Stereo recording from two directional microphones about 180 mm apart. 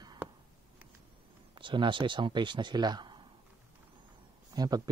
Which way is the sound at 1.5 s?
25° right (ahead or behind).